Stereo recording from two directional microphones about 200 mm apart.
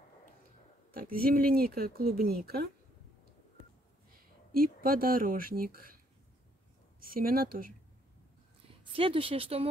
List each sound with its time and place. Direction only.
0.9 s speech: 45° right (ahead or behind)
4.1 s speech: 45° right (ahead or behind)
7.0 s speech: 45° right (ahead or behind)
8.9 s speech: 25° right (ahead or behind)